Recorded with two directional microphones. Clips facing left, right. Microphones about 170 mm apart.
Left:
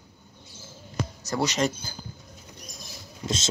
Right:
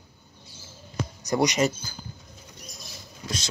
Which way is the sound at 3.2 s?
25° left (ahead or behind).